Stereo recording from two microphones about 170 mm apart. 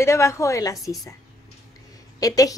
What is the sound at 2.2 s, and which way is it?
Speech, 20° left (ahead or behind).